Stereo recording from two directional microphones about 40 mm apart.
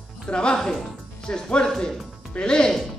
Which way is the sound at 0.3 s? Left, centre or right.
Left.